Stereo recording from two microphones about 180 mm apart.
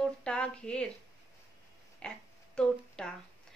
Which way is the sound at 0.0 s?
5° left (ahead or behind).